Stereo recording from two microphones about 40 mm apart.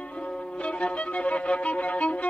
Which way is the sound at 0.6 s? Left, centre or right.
Left.